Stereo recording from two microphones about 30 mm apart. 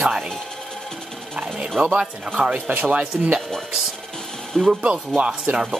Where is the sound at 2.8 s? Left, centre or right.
Right.